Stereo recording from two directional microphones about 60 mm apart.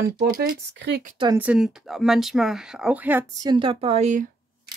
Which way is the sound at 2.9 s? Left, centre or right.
Right.